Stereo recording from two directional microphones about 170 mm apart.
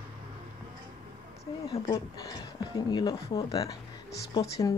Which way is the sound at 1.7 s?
25° left (ahead or behind).